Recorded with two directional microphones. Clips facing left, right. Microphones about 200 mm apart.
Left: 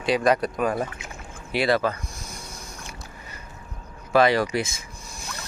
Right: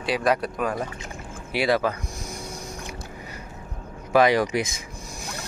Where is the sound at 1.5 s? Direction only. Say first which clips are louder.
Even; 10° right (ahead or behind).